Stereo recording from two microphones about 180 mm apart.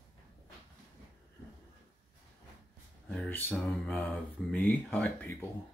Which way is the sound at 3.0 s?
10° left (ahead or behind).